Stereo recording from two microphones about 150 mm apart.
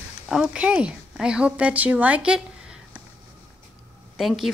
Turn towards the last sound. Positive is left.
turn(degrees=0)  # may be behind; listen again after turning